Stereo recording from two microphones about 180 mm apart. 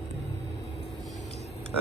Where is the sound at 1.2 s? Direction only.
35° left (ahead or behind).